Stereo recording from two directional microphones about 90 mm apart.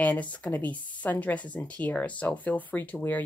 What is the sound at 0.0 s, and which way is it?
Speech, 15° left (ahead or behind).